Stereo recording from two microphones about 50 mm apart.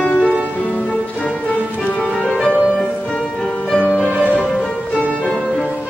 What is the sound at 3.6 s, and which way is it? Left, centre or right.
Music, centre.